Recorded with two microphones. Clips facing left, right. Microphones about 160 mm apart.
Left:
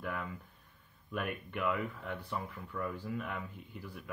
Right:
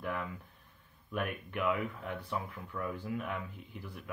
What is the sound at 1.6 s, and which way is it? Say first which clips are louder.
Speech: right 2 dB; 50° right (ahead or behind).